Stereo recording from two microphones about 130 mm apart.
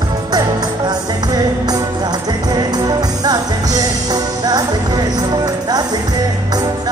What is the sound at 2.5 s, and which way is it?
Music, 30° right (ahead or behind).